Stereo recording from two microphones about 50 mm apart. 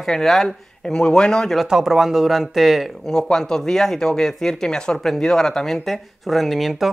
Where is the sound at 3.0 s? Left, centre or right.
Centre.